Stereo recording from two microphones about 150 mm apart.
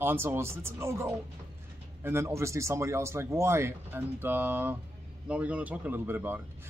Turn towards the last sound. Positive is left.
turn(degrees=-15)  # may be behind; listen again after turning